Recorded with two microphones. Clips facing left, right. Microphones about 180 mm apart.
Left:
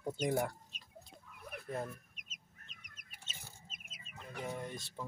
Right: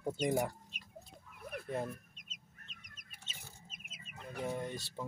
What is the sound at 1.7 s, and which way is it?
Chicken, 25° right (ahead or behind).